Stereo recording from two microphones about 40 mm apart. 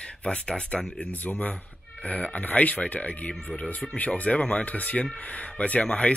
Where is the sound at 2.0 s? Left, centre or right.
Left.